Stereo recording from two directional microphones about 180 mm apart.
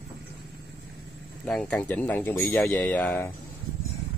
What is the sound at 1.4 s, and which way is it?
Speech, 5° left (ahead or behind).